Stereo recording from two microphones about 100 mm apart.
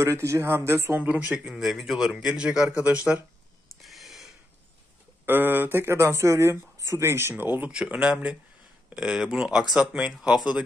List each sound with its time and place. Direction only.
0.0 s speech: 30° right (ahead or behind)
1.0 s a man's voice: 15° right (ahead or behind)
1.4 s a man's voice: centre (ahead or behind)
3.8 s a sound: centre (ahead or behind)
5.2 s a man's voice: 20° right (ahead or behind)